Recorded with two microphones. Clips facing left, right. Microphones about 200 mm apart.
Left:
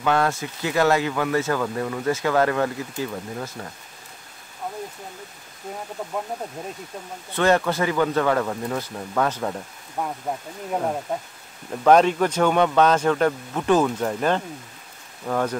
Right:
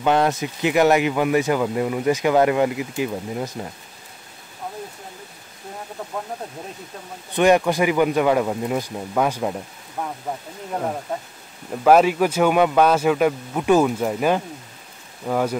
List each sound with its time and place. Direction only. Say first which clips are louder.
0.0 s speech: right 3 dB; 20° right (ahead or behind)
7.3 s speech: right 4 dB; 15° right (ahead or behind)
10.0 s speech: left 1 dB; 5° left (ahead or behind)
11.7 s speech: right 1 dB; 5° right (ahead or behind)